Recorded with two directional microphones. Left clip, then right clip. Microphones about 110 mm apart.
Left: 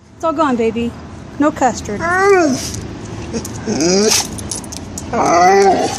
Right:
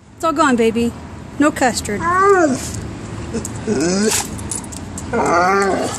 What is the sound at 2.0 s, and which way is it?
Speech, 50° left (ahead or behind).